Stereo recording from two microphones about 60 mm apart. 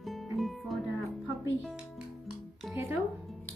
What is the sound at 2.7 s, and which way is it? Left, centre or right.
Music, right.